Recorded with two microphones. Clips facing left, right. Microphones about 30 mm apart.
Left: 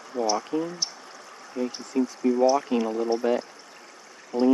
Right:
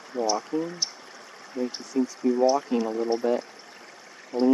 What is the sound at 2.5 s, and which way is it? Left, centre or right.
Speech, left.